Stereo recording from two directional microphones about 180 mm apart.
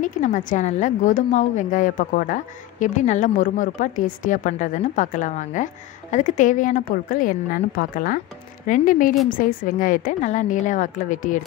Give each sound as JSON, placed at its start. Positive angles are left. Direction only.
{"t": 0.0, "sound": "a woman's voice", "side_deg": 45}